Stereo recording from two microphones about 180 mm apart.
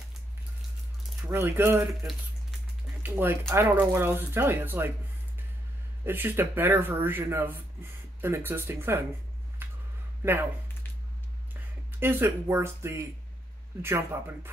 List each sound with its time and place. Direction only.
1.2 s speech: 15° right (ahead or behind)
3.0 s speech: 10° right (ahead or behind)
6.0 s speech: 10° right (ahead or behind)
9.6 s a sound: 10° right (ahead or behind)
10.2 s speech: 10° right (ahead or behind)
12.0 s speech: 15° right (ahead or behind)